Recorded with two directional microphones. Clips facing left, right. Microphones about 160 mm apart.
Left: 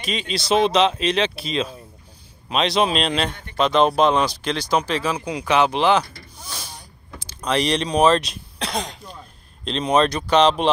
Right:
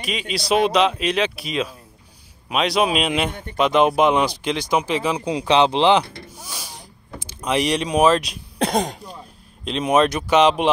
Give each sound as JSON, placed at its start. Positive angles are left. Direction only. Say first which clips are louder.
{"t": 0.0, "sound": "speech", "louder": "even", "side_deg": -5}
{"t": 6.4, "sound": "speech", "louder": "even", "side_deg": -5}
{"t": 8.5, "sound": "speech", "louder": "right 7 dB", "side_deg": -50}
{"t": 9.7, "sound": "speech", "louder": "right 1 dB", "side_deg": -10}